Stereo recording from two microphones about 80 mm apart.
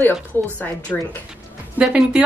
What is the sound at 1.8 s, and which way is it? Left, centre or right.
Speech, centre.